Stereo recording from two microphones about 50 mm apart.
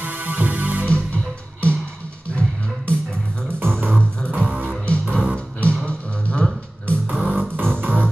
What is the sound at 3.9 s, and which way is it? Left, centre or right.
Music, right.